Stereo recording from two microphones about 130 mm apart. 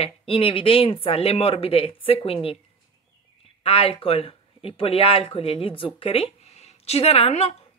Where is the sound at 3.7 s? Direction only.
45° left (ahead or behind).